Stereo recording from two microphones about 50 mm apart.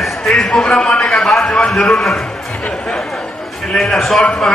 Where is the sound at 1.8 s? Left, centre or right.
Centre.